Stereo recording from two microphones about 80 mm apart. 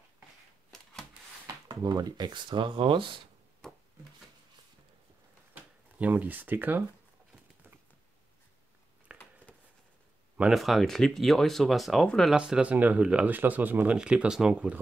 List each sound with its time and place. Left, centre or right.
1.7 s speech: right
5.5 s a sound: centre
9.1 s a sound: centre
10.5 s speech: centre
12.4 s speech: centre
13.9 s speech: centre